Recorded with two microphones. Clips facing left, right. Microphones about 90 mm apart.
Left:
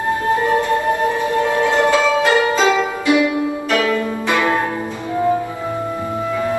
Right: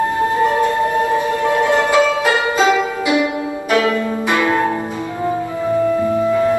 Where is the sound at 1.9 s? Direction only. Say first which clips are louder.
Even; 20° right (ahead or behind).